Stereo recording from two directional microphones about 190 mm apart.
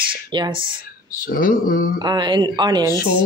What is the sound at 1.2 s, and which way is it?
Speech, 50° left (ahead or behind).